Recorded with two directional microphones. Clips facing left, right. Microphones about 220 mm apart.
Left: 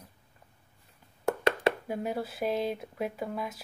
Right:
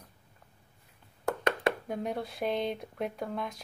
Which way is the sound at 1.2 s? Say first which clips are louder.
Left 2 dB; 25° left (ahead or behind).